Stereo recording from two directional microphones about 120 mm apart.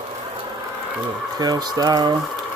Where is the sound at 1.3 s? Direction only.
35° right (ahead or behind).